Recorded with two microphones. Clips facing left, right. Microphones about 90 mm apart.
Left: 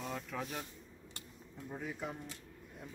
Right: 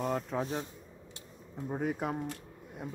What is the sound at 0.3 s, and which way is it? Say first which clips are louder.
Speech: right 7 dB; 30° right (ahead or behind).